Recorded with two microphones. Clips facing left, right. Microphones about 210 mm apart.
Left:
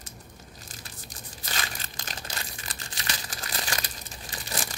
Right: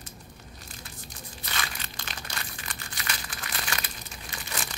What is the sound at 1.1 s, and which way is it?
Crumpling, 40° left (ahead or behind).